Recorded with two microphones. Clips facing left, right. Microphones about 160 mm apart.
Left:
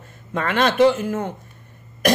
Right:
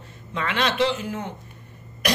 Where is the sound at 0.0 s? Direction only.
50° left (ahead or behind).